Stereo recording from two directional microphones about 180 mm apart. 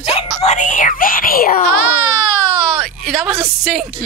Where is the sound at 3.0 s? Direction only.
Centre (ahead or behind).